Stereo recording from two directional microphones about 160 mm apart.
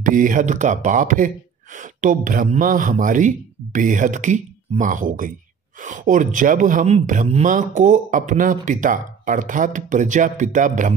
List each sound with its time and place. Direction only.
0.0 s speech: 55° right (ahead or behind)